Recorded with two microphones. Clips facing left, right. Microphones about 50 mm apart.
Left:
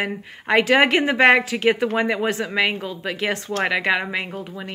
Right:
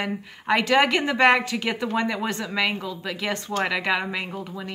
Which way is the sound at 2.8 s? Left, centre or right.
Left.